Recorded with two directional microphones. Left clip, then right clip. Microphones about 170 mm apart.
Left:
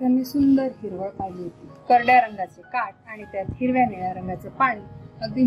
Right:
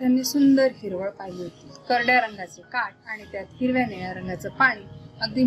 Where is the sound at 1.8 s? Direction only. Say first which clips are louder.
Left 4 dB; 5° left (ahead or behind).